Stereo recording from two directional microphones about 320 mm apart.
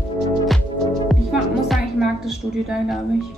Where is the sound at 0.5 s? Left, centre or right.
Centre.